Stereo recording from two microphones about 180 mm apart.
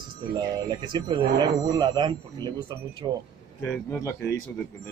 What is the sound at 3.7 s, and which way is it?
Speech, 10° left (ahead or behind).